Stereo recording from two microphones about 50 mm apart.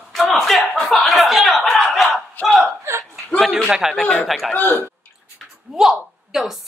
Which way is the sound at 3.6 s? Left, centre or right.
Centre.